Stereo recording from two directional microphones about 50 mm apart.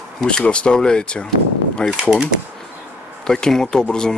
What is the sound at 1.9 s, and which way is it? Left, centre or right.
Speech, centre.